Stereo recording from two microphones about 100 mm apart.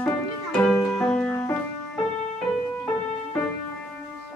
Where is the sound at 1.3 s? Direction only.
20° left (ahead or behind).